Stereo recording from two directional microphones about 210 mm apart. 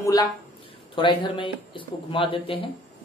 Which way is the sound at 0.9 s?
25° left (ahead or behind).